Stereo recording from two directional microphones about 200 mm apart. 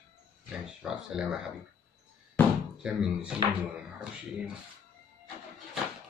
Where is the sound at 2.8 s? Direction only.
5° right (ahead or behind).